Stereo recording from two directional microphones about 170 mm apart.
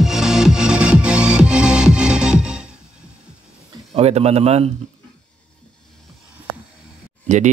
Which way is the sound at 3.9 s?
35° right (ahead or behind).